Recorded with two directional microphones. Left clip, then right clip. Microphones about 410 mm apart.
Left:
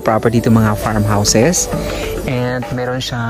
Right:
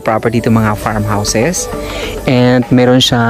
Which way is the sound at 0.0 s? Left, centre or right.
Centre.